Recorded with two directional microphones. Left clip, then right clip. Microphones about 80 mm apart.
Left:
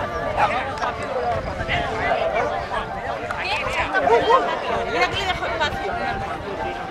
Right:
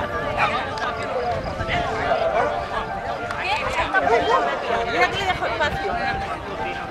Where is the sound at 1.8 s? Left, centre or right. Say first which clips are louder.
Right 1 dB; centre.